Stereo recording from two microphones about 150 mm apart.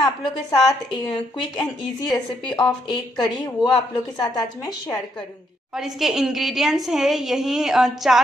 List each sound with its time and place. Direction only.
0.0 s a woman's voice: 30° left (ahead or behind)
5.8 s a woman's voice: centre (ahead or behind)